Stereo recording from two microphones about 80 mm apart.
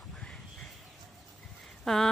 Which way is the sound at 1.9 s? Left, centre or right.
Centre.